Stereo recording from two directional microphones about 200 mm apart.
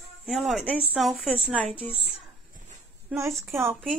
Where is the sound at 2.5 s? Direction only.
40° right (ahead or behind).